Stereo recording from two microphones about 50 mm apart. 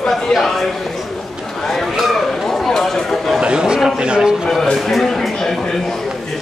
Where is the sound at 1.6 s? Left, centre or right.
Centre.